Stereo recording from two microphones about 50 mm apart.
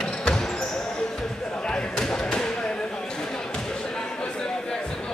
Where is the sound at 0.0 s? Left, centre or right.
Centre.